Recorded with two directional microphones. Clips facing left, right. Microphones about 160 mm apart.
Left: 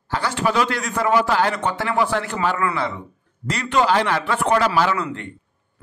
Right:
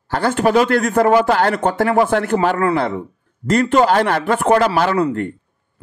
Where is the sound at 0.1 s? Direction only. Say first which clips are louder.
Right 6 dB; 50° right (ahead or behind).